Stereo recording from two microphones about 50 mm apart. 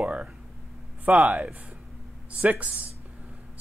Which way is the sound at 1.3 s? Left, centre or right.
Right.